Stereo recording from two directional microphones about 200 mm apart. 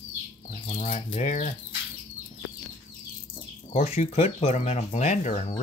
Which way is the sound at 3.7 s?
30° left (ahead or behind).